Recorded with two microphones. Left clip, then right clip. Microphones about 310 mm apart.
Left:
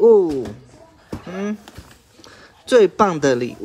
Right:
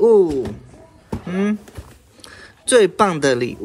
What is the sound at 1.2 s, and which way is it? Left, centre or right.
Speech, right.